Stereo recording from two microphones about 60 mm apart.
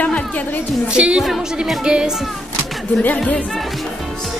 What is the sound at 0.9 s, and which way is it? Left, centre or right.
A child's voice, centre.